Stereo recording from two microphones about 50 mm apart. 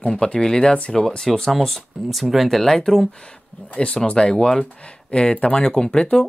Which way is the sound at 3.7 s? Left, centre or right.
Left.